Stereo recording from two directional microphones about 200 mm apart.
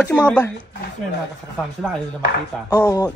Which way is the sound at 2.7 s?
15° left (ahead or behind).